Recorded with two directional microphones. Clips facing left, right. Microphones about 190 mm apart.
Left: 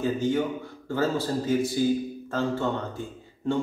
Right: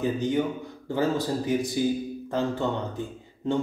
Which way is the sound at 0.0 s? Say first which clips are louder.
Even; 15° right (ahead or behind).